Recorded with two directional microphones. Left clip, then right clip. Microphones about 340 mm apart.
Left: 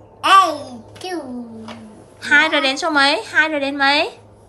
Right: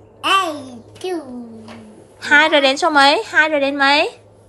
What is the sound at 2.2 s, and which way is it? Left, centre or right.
A woman's voice, centre.